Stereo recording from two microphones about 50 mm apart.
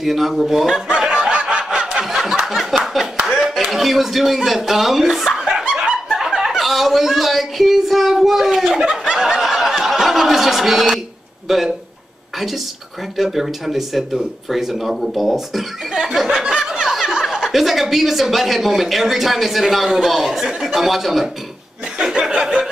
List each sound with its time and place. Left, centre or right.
0.0 s speech: centre
0.8 s snicker: centre
2.0 s a sound: centre
3.5 s speech: centre
5.6 s snicker: centre
6.1 s a sound: centre
6.6 s speech: centre
13.2 s speech: centre
21.9 s chuckle: centre